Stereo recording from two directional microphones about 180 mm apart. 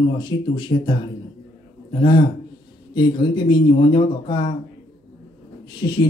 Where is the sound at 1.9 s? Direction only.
25° left (ahead or behind).